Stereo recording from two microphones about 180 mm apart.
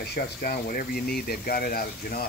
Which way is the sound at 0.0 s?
65° left (ahead or behind).